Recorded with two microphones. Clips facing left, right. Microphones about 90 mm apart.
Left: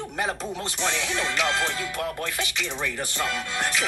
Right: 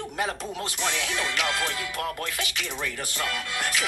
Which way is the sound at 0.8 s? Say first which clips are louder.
Left 2 dB; 5° right (ahead or behind).